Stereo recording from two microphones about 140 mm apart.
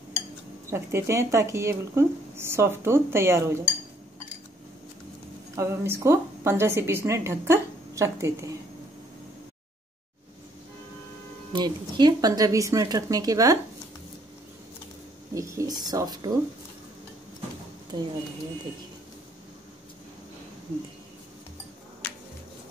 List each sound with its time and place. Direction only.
0.7 s speech: 20° right (ahead or behind)
5.6 s a woman's voice: 20° right (ahead or behind)
11.5 s a woman's voice: 30° right (ahead or behind)
15.3 s a woman's voice: 20° right (ahead or behind)
17.9 s speech: 30° right (ahead or behind)
22.0 s finger snapping: 10° left (ahead or behind)